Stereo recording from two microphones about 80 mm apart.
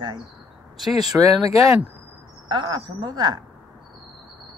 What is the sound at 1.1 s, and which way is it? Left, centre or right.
Speech, right.